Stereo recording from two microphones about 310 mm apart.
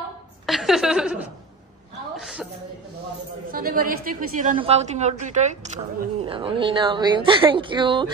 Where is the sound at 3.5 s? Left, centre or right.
Right.